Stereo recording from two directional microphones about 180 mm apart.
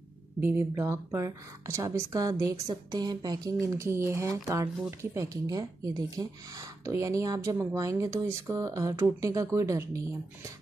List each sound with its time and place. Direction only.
0.4 s a woman's voice: 10° right (ahead or behind)